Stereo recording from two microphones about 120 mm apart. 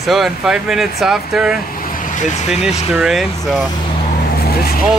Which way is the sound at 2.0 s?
90° left.